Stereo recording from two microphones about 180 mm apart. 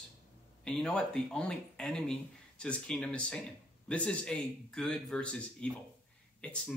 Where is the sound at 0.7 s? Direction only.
5° left (ahead or behind).